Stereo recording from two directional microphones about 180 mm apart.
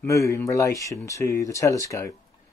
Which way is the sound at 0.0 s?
15° left (ahead or behind).